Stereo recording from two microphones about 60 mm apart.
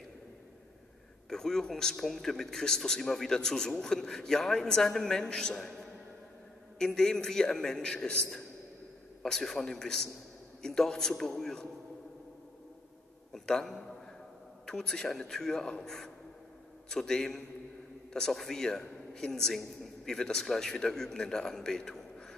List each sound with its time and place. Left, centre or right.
1.3 s a man's voice: centre
13.3 s a man's voice: centre